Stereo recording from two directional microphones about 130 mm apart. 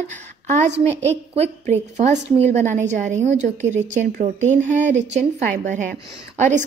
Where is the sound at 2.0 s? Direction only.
60° right (ahead or behind).